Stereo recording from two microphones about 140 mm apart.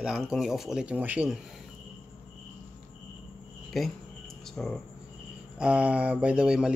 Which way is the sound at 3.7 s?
Centre (ahead or behind).